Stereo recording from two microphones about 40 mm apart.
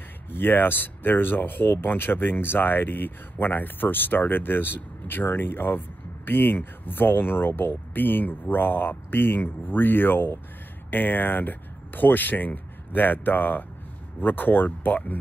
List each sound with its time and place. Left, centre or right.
0.3 s speech: left